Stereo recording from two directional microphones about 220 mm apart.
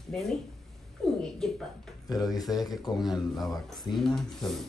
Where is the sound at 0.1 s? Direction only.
Centre (ahead or behind).